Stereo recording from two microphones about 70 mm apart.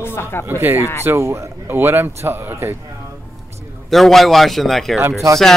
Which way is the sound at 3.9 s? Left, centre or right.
Centre.